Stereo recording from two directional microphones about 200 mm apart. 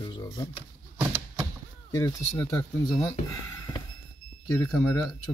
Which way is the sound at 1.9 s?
15° left (ahead or behind).